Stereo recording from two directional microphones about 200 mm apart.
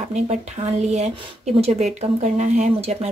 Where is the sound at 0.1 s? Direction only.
35° right (ahead or behind).